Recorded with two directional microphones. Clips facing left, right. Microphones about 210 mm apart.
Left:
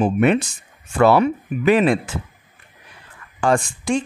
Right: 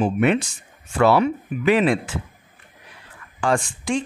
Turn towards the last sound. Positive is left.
turn(degrees=45)  # may be behind; listen again after turning